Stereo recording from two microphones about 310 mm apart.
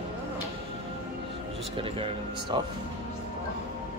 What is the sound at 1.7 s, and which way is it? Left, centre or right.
Speech, centre.